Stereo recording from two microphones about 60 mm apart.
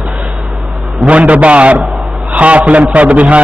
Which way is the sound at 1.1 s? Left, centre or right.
Right.